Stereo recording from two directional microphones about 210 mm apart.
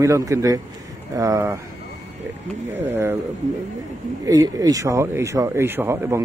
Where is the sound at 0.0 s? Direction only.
15° right (ahead or behind).